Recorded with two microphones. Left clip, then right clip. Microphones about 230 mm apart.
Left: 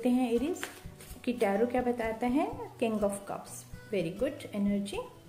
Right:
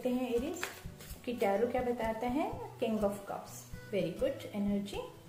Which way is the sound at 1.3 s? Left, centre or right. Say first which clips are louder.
Left 2 dB; left.